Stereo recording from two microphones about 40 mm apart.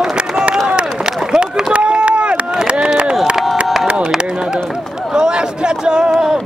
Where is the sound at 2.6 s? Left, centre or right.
Right.